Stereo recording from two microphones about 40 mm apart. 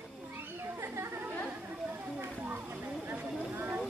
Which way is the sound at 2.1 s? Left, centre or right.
Right.